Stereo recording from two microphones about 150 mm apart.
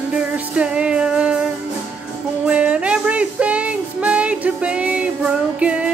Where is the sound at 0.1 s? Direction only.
5° right (ahead or behind).